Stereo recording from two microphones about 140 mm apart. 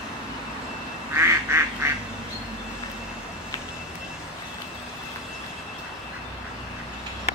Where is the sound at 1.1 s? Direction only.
20° right (ahead or behind).